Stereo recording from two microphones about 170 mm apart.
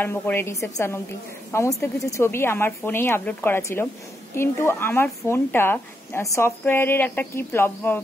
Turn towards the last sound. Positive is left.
turn(degrees=15)  # may be behind; listen again after turning